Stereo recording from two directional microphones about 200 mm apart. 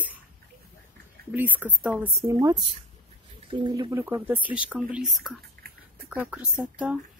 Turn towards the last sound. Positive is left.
turn(degrees=-5)  # may be behind; listen again after turning